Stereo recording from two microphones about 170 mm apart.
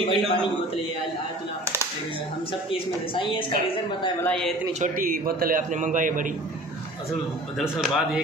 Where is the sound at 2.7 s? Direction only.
30° left (ahead or behind).